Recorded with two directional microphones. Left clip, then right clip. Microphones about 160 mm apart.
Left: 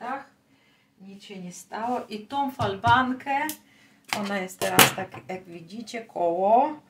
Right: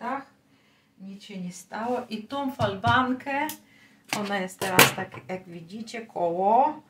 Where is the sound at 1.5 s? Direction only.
10° left (ahead or behind).